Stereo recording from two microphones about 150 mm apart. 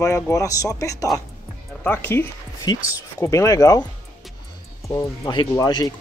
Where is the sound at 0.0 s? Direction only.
20° left (ahead or behind).